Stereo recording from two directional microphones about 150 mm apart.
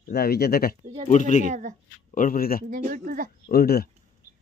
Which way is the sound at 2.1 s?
70° left (ahead or behind).